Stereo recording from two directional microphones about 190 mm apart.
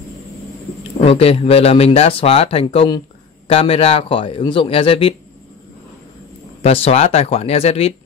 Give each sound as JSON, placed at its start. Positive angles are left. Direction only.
{"t": 1.0, "sound": "a man's voice", "side_deg": 30}
{"t": 6.6, "sound": "speech", "side_deg": 30}